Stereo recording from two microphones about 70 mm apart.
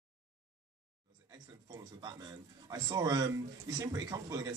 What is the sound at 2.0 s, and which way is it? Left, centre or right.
A man's voice, right.